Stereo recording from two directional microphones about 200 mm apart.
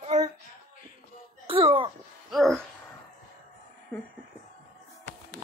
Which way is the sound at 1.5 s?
25° right (ahead or behind).